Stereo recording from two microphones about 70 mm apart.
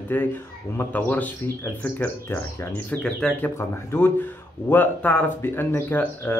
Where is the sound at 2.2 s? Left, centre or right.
Left.